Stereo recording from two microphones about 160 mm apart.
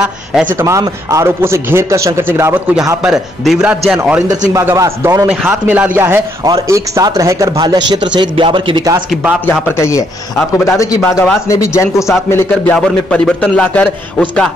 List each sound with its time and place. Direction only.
0.0 s a man's voice: 5° right (ahead or behind)
4.6 s a man's voice: 20° right (ahead or behind)
9.1 s a man's voice: 10° right (ahead or behind)
9.5 s a man's voice: 15° left (ahead or behind)
12.7 s a man's voice: 5° left (ahead or behind)